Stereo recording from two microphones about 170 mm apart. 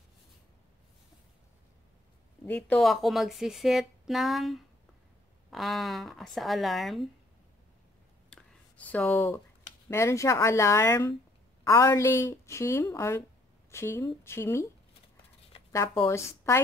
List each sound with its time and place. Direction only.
2.4 s a woman's voice: 5° left (ahead or behind)
8.3 s a sound: 5° left (ahead or behind)
9.8 s a woman's voice: 15° left (ahead or behind)
16.1 s a woman's voice: 15° left (ahead or behind)